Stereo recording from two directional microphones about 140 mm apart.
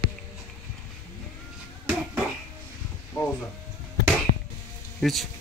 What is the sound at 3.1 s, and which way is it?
Speech, 20° left (ahead or behind).